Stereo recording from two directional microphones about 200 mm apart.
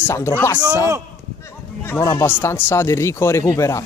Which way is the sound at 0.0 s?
10° left (ahead or behind).